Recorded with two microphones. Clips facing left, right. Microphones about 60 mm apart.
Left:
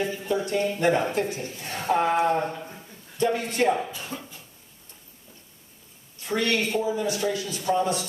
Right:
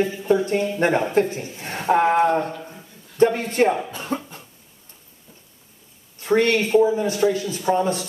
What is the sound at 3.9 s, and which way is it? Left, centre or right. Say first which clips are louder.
Speech: right 8 dB; right.